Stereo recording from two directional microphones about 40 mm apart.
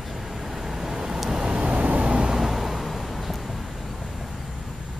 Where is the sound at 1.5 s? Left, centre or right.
Right.